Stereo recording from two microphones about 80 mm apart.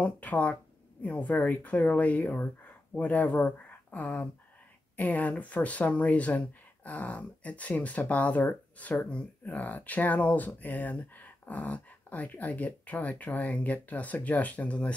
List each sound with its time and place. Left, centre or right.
0.0 s speech: centre